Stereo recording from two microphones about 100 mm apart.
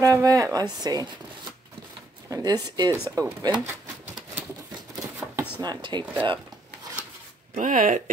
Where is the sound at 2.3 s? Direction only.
40° right (ahead or behind).